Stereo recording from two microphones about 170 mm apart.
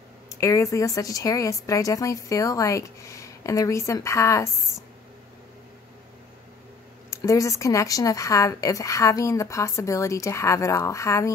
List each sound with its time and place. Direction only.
0.4 s speech: 20° left (ahead or behind)
7.1 s speech: 20° left (ahead or behind)